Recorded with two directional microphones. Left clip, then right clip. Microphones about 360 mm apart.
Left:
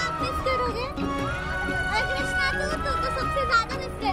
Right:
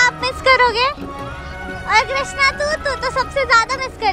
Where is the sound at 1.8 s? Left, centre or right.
Right.